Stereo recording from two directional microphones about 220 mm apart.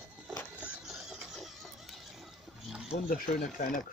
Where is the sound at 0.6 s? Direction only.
5° right (ahead or behind).